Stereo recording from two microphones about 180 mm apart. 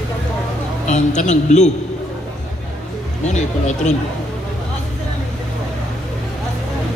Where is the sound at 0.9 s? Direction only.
40° left (ahead or behind).